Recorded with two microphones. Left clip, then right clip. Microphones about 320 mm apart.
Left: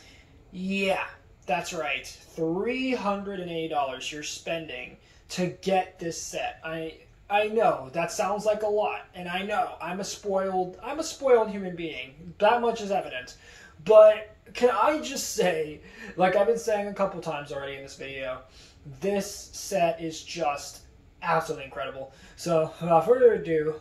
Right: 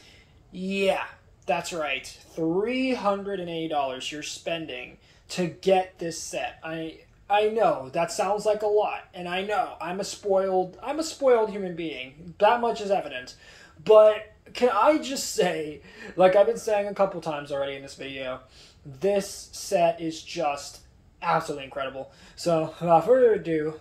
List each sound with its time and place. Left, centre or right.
0.6 s speech: centre